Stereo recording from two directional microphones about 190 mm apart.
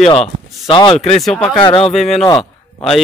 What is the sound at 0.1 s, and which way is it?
Speech, 30° left (ahead or behind).